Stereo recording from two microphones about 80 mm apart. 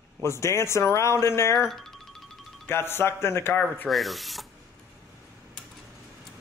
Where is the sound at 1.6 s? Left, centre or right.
Centre.